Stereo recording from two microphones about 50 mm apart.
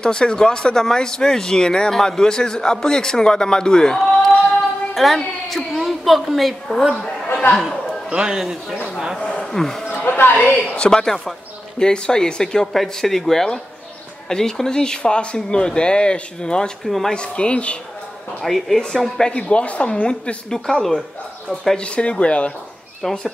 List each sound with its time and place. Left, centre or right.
0.0 s a woman's voice: centre
8.1 s a man's voice: centre
9.2 s a sound: centre
9.5 s speech: centre
9.8 s a sound: left
10.8 s speech: centre
16.8 s a woman's voice: centre
17.1 s speech: left
18.4 s a woman's voice: centre
19.1 s speech: centre
21.7 s speech: left
23.0 s a woman's voice: centre